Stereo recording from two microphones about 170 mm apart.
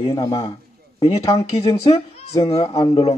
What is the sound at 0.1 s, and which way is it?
Speech, 20° left (ahead or behind).